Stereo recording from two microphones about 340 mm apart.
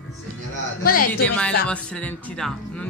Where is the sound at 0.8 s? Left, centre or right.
Left.